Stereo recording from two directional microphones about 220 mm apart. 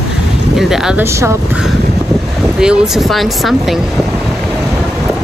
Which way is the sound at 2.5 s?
Centre (ahead or behind).